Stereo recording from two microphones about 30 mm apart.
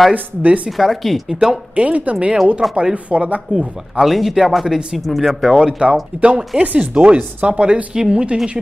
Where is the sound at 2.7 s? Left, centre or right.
Right.